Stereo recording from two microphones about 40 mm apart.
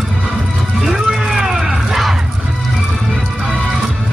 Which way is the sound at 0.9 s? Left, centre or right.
Centre.